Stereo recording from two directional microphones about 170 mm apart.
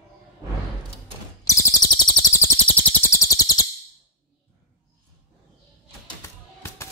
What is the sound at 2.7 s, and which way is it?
Bird, 10° left (ahead or behind).